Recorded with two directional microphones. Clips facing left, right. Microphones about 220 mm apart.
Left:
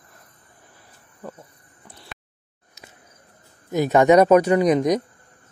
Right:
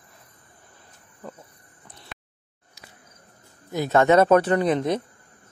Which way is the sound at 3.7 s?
15° left (ahead or behind).